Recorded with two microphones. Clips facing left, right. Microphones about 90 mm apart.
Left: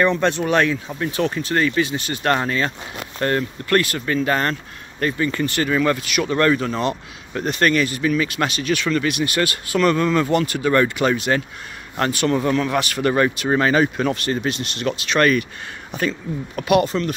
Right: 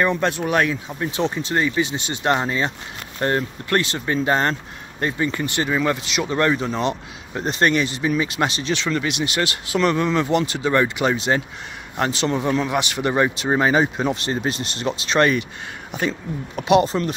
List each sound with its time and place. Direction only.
0.0 s speech: 10° right (ahead or behind)
10.0 s speech: 5° right (ahead or behind)
10.3 s speech: 20° right (ahead or behind)